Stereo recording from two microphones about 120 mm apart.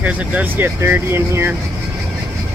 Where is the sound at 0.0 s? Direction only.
10° right (ahead or behind).